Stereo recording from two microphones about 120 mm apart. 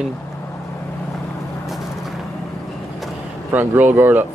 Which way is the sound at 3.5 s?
15° right (ahead or behind).